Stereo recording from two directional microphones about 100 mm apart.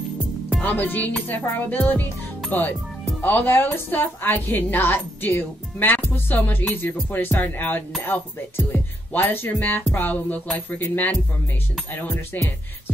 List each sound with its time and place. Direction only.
0.6 s music: 15° left (ahead or behind)
1.4 s a woman's voice: 20° left (ahead or behind)
2.5 s music: 15° left (ahead or behind)
3.2 s a woman's voice: 20° left (ahead or behind)
12.3 s a woman's voice: 20° left (ahead or behind)